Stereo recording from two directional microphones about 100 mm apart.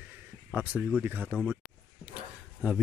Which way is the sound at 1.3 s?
20° right (ahead or behind).